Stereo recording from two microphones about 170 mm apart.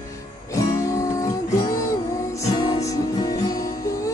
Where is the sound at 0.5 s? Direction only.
20° left (ahead or behind).